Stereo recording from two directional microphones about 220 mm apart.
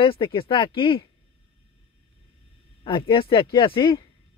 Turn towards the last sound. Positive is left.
turn(degrees=25)  # may be behind; listen again after turning